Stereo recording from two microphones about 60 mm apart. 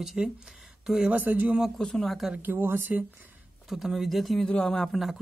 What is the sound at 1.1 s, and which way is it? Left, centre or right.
Speech, right.